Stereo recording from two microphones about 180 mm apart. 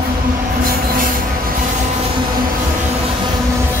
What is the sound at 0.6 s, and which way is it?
Train, 50° right (ahead or behind).